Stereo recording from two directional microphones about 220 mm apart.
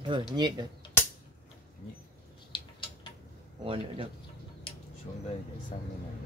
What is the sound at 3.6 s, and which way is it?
Speech, 25° right (ahead or behind).